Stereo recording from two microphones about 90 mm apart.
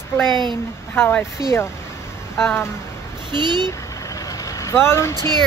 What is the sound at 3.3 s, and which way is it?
Speech, 60° right (ahead or behind).